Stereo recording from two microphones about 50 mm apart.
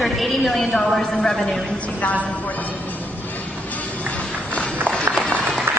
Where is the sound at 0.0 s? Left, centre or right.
Centre.